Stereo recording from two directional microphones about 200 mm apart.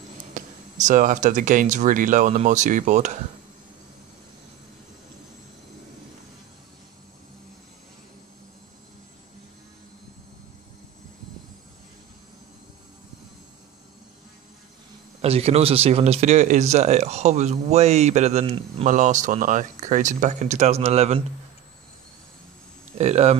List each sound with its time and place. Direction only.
0.3 s speech: 40° right (ahead or behind)
15.2 s speech: 30° right (ahead or behind)
22.9 s speech: 35° right (ahead or behind)